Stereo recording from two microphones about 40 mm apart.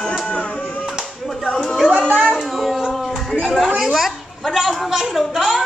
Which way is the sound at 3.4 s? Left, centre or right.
Centre.